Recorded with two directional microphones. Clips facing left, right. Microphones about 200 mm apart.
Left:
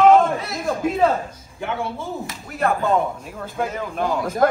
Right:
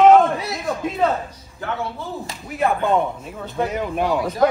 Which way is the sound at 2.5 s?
Centre (ahead or behind).